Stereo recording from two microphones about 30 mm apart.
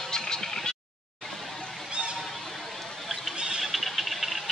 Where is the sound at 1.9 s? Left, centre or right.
Right.